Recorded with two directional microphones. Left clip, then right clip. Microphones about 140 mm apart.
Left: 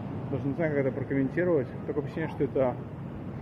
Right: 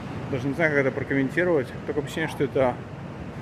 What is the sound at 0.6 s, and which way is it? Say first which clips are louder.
Speech: right 7 dB; 30° right (ahead or behind).